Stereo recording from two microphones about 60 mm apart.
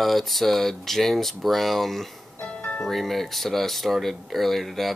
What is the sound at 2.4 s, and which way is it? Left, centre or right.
Music, left.